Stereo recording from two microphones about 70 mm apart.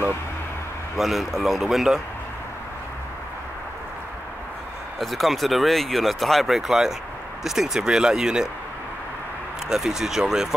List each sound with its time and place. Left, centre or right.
0.9 s speech: centre
4.9 s speech: centre
9.7 s speech: centre